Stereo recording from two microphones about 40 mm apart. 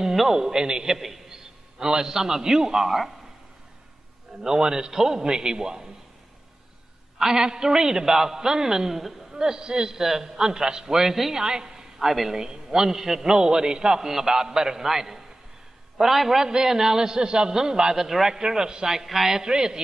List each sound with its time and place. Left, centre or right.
0.1 s a sound: centre
0.4 s a man's voice: centre
0.9 s a sound: centre
1.8 s a man's voice: centre
4.4 s a man's voice: centre
7.2 s a man's voice: centre
11.4 s a woman's voice: centre